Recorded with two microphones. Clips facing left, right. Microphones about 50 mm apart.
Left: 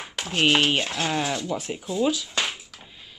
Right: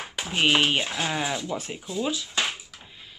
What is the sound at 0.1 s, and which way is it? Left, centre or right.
Speech, centre.